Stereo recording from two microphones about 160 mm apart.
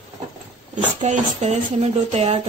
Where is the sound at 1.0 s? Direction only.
45° right (ahead or behind).